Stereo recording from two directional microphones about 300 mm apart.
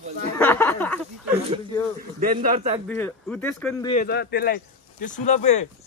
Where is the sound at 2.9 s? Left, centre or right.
Centre.